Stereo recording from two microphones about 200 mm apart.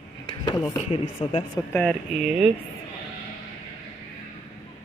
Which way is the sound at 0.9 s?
25° left (ahead or behind).